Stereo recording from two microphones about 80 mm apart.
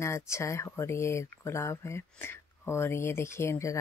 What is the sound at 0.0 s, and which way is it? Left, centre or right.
Speech, left.